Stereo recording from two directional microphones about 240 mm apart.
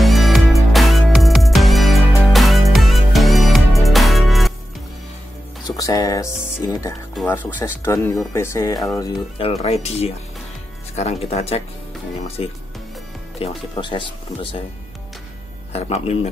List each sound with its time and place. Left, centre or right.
0.0 s music: centre
5.8 s speech: centre
9.4 s speech: left
15.7 s speech: left